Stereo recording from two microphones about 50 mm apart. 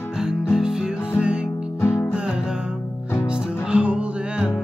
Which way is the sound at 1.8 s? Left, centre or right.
Left.